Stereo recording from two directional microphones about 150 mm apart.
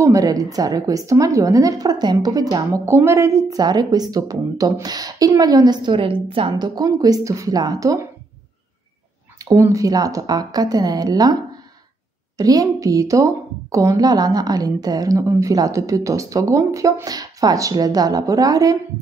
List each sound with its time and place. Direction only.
0.0 s a woman's voice: 25° right (ahead or behind)
9.4 s a woman's voice: 20° right (ahead or behind)
12.4 s a woman's voice: 25° right (ahead or behind)